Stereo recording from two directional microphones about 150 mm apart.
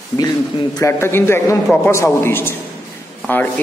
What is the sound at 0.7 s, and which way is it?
A man's voice, 20° left (ahead or behind).